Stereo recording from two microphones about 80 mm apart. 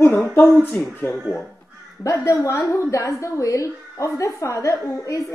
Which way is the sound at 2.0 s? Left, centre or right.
Left.